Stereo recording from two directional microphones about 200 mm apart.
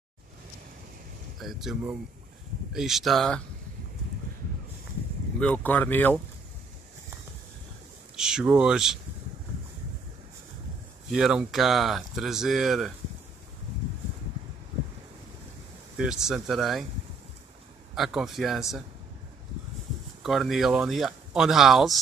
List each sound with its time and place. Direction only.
1.4 s speech: centre (ahead or behind)
5.4 s speech: 10° left (ahead or behind)
8.2 s speech: 5° right (ahead or behind)
11.1 s speech: 5° right (ahead or behind)
16.0 s speech: 5° right (ahead or behind)
17.9 s speech: centre (ahead or behind)
20.2 s speech: centre (ahead or behind)